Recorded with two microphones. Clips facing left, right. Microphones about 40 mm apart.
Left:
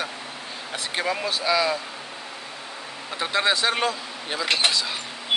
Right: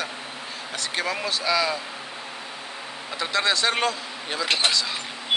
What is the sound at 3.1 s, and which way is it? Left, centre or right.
Speech, centre.